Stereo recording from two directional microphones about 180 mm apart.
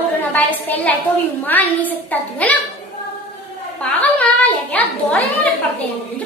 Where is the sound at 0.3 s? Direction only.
10° left (ahead or behind).